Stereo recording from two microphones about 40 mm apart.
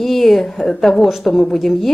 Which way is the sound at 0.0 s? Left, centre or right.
Centre.